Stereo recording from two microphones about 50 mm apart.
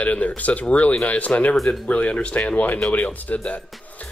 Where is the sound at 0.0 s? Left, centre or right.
Left.